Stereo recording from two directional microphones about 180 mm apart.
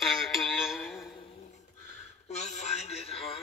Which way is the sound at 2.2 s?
40° left (ahead or behind).